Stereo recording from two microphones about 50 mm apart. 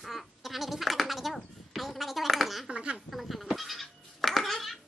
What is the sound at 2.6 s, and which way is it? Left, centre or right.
Speech, centre.